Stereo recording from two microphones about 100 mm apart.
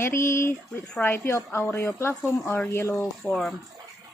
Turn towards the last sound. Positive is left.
turn(degrees=0)  # may be behind; listen again after turning